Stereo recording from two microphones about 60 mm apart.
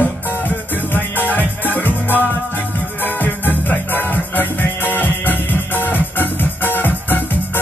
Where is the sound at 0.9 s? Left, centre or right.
Left.